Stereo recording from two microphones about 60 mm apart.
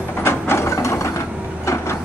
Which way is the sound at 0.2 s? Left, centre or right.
Left.